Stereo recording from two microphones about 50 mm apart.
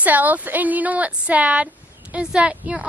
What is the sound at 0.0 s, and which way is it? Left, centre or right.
Speech, right.